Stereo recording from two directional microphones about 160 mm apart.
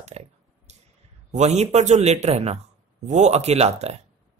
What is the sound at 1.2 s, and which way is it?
Speech, 45° right (ahead or behind).